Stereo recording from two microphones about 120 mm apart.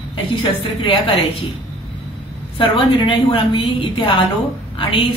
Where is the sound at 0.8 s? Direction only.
50° left (ahead or behind).